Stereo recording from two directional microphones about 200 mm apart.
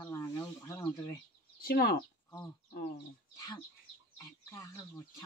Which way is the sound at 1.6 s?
50° left (ahead or behind).